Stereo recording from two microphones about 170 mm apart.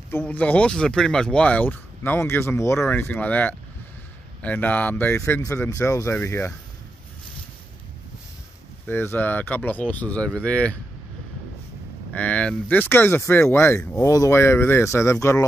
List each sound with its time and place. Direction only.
0.1 s speech: 10° left (ahead or behind)
8.8 s speech: 15° left (ahead or behind)
12.1 s speech: 10° left (ahead or behind)